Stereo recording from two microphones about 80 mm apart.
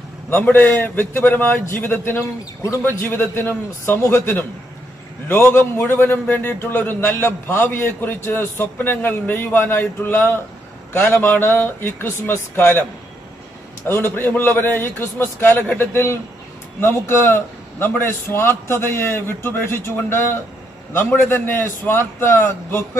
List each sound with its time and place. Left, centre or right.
0.3 s a man's voice: left
2.2 s speech: left
2.8 s a man's voice: left
13.8 s a man's voice: left